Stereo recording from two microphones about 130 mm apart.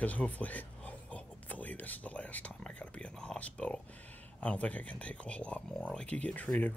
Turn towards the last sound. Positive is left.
turn(degrees=10)  # may be behind; listen again after turning